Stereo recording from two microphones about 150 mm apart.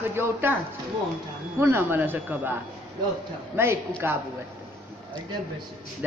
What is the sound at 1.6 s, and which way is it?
Speech, 15° right (ahead or behind).